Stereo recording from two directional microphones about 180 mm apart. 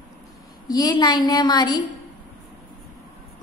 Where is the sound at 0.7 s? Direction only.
20° left (ahead or behind).